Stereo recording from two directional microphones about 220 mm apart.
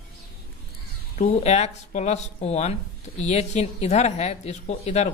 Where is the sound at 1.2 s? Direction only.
30° left (ahead or behind).